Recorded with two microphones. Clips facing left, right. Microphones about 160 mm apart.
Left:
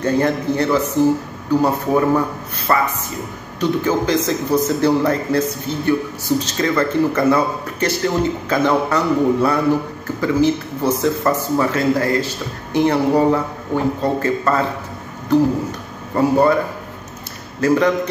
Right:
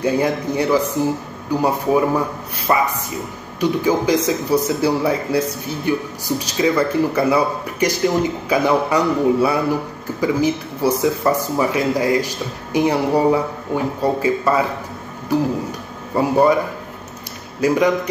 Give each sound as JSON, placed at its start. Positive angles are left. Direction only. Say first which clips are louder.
{"t": 0.0, "sound": "a man's voice", "louder": "left 1 dB", "side_deg": -10}
{"t": 17.6, "sound": "speech", "louder": "left 1 dB", "side_deg": -10}